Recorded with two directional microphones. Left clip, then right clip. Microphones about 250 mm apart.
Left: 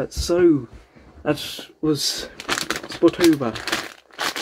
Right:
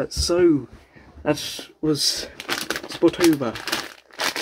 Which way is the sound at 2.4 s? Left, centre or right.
Centre.